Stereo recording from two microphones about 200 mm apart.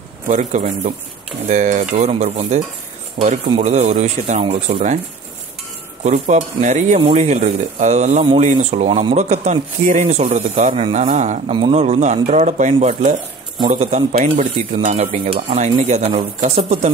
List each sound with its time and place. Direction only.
0.3 s speech: 35° right (ahead or behind)
6.0 s speech: 40° right (ahead or behind)